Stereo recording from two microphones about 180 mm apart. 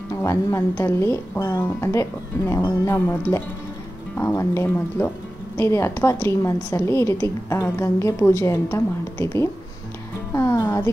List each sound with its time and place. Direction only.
0.1 s a woman's voice: 15° left (ahead or behind)
10.3 s music: 15° left (ahead or behind)